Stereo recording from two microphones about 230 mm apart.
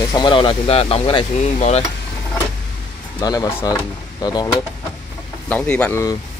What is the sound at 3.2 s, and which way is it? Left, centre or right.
Speech, centre.